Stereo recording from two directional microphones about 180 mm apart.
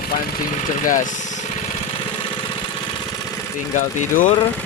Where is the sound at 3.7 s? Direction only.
45° left (ahead or behind).